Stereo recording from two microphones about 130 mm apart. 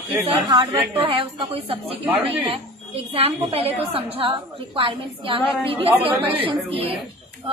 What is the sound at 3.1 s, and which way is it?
A woman's voice, 45° right (ahead or behind).